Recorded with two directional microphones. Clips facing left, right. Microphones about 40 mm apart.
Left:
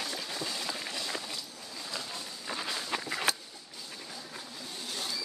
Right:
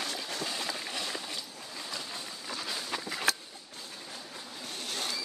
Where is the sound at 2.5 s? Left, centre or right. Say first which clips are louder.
Left 2 dB; centre.